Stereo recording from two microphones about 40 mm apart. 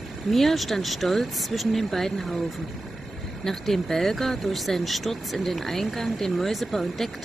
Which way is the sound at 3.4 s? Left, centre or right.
Centre.